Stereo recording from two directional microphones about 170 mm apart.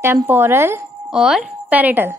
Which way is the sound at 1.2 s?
5° right (ahead or behind).